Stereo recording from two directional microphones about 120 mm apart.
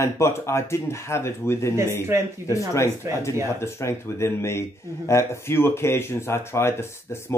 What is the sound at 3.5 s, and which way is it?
Speech, 20° left (ahead or behind).